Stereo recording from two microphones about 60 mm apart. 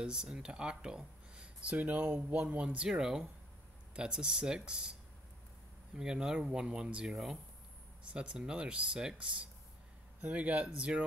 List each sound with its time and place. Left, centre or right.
0.0 s speech: centre
5.9 s speech: centre
10.2 s speech: right